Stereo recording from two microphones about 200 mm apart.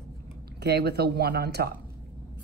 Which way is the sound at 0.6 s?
50° right (ahead or behind).